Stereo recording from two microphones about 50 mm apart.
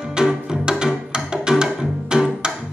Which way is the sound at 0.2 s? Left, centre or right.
Centre.